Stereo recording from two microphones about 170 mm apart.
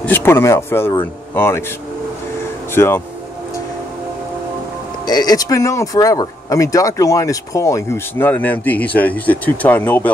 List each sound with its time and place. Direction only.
0.0 s speech: 15° left (ahead or behind)
2.7 s speech: 15° left (ahead or behind)
5.0 s speech: 25° left (ahead or behind)